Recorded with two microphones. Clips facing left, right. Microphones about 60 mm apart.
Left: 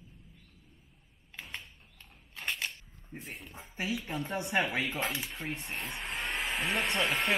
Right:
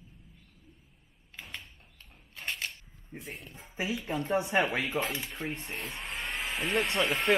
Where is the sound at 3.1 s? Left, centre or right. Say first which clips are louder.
Right 1 dB; centre.